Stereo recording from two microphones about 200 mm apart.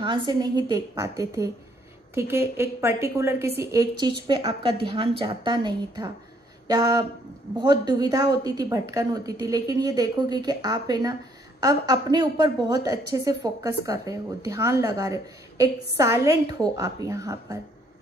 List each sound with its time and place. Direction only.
0.0 s a woman's voice: 25° right (ahead or behind)